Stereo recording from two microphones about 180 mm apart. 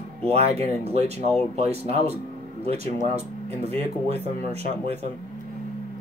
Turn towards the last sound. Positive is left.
turn(degrees=-35)  # may be behind; listen again after turning